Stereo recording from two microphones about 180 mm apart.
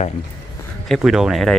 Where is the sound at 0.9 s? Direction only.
5° right (ahead or behind).